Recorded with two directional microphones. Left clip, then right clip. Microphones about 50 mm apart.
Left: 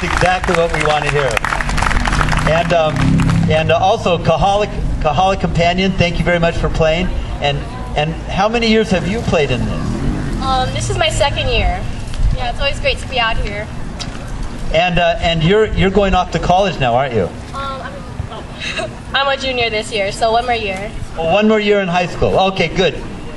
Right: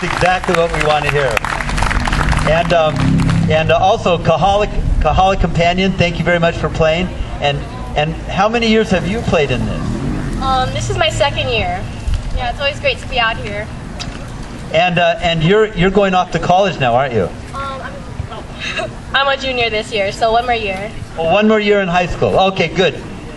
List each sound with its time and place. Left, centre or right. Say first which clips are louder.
0.9 s a man's voice: right 1 dB; right
1.4 s applause: left 1 dB; left
2.5 s a man's voice: right 2 dB; right
2.9 s music: even; left
3.4 s a man's voice: right 1 dB; right
14.7 s a man's voice: right 1 dB; right
18.6 s a man's voice: right 1 dB; right